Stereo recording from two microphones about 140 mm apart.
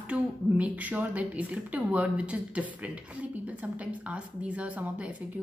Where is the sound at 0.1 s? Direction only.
10° right (ahead or behind).